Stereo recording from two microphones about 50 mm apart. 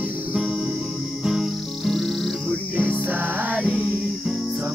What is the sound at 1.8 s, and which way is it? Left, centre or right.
Music, centre.